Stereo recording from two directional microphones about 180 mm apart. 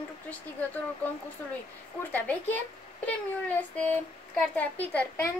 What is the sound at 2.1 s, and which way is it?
Speech, 10° left (ahead or behind).